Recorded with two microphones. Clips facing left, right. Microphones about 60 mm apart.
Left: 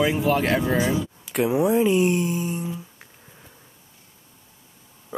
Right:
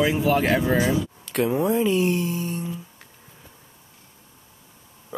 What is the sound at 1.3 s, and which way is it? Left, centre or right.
Speech, centre.